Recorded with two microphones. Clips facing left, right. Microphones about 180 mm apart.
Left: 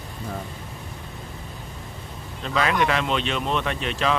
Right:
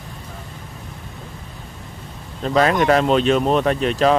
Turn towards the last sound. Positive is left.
turn(degrees=-40)  # may be behind; listen again after turning